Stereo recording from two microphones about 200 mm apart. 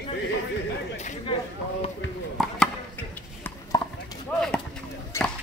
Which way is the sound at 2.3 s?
Centre (ahead or behind).